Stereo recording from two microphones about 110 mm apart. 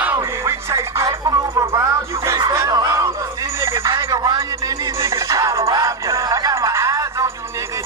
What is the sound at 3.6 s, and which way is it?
Telephone, 25° right (ahead or behind).